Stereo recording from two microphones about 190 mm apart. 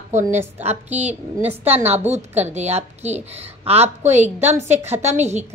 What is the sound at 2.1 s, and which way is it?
A woman's voice, 35° right (ahead or behind).